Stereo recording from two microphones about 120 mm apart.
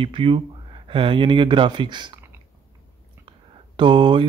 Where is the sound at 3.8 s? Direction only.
40° right (ahead or behind).